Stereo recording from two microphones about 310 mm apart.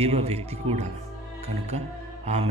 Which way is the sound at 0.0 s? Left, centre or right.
Centre.